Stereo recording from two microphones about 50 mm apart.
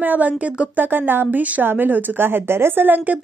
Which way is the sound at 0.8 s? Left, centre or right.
Right.